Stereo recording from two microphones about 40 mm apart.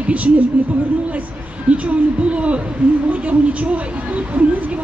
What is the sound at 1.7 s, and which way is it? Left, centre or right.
A woman's voice, right.